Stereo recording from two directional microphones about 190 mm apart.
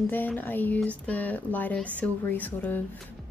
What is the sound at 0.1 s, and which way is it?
A woman's voice, 10° left (ahead or behind).